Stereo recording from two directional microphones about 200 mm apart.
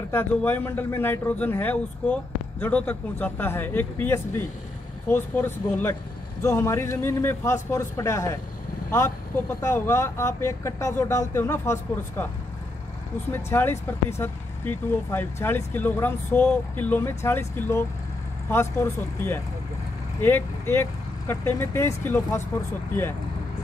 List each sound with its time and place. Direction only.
0.1 s speech: 10° left (ahead or behind)
9.6 s speech: 15° left (ahead or behind)
13.3 s speech: 10° left (ahead or behind)